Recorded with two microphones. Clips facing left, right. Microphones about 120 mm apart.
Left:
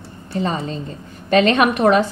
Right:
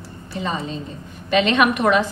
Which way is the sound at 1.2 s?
40° left (ahead or behind).